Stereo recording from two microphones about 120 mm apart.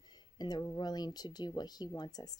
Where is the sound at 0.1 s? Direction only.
35° left (ahead or behind).